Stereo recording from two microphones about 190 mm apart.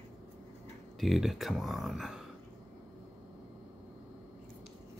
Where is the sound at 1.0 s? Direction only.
Centre (ahead or behind).